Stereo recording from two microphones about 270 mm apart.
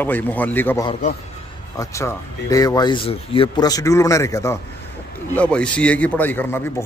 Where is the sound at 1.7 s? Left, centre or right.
Centre.